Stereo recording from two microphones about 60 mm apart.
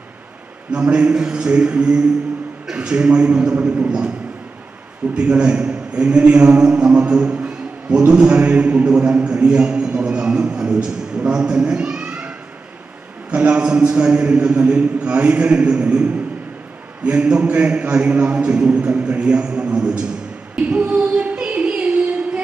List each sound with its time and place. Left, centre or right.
0.7 s a man's voice: centre
5.1 s a man's voice: centre
20.5 s music: right